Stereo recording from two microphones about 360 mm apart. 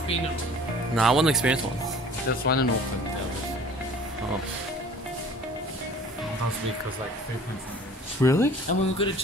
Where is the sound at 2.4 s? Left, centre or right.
Left.